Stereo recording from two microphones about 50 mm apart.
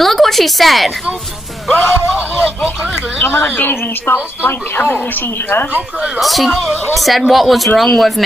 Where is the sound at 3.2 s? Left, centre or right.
Left.